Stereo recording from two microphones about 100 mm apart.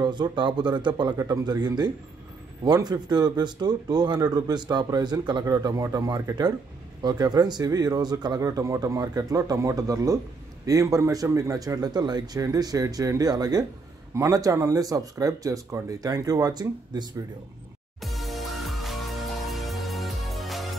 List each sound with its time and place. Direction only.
0.0 s speech: 50° right (ahead or behind)
1.1 s speech: 35° right (ahead or behind)
18.0 s music: centre (ahead or behind)